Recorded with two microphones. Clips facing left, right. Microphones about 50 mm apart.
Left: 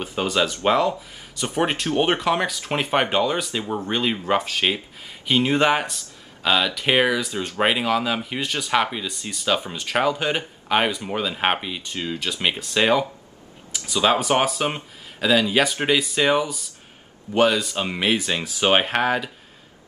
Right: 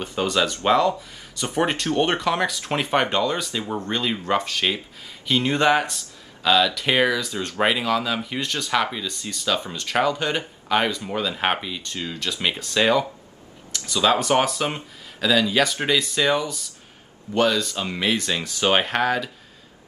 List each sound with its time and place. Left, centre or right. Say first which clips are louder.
0.0 s speech: even; centre
13.7 s a sound: even; centre
13.9 s speech: even; centre